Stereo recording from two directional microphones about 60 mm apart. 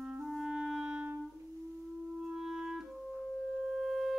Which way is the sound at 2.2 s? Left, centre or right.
Centre.